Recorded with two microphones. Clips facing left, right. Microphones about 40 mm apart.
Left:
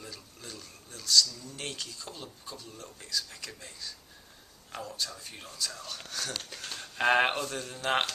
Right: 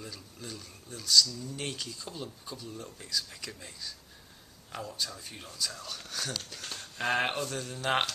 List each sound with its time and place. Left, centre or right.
0.0 s speech: centre
6.6 s a sound: centre
7.0 s speech: centre
7.4 s speech: centre